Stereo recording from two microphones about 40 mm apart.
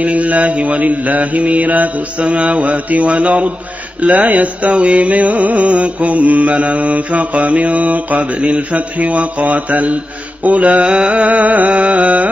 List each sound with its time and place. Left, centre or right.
0.0 s music: right